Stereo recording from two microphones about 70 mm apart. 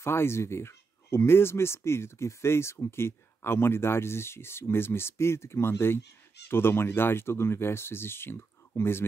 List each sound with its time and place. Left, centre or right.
0.0 s speech: left